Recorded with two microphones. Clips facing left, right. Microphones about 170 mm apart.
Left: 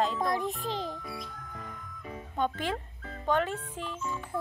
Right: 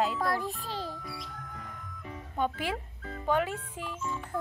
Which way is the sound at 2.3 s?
10° right (ahead or behind).